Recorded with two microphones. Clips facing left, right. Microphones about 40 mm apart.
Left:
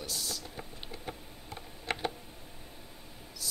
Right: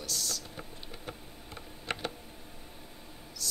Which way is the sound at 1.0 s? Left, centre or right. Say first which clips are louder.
Left 1 dB; centre.